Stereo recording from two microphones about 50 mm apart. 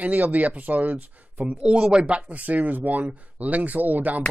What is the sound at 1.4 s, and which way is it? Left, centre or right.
Speech, centre.